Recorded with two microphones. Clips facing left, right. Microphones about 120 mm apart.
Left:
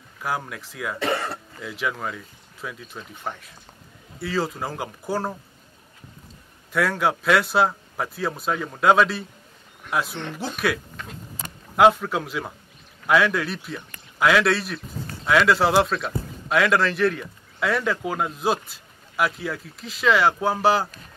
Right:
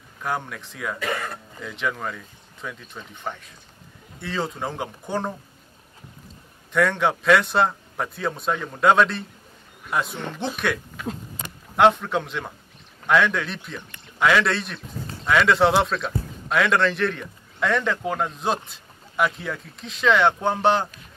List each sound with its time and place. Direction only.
0.2 s speech: 5° left (ahead or behind)
0.9 s speech: 30° left (ahead or behind)
1.6 s speech: 5° left (ahead or behind)
6.7 s speech: 5° left (ahead or behind)